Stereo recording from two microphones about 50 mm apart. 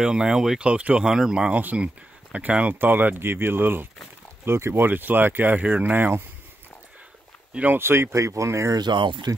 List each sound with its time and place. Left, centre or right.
0.0 s speech: centre
0.6 s speech: right
1.0 s speech: centre
1.5 s speech: right
2.7 s speech: right
4.5 s speech: right
4.8 s speech: right
7.6 s speech: right